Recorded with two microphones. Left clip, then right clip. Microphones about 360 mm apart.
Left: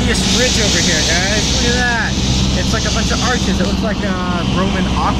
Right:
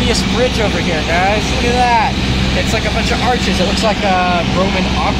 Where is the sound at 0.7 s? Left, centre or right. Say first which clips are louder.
Even; right.